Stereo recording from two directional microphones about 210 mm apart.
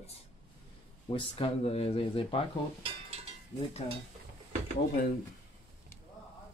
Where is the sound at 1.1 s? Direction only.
25° left (ahead or behind).